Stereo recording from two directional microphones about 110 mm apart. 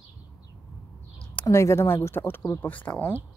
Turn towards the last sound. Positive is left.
turn(degrees=15)  # may be behind; listen again after turning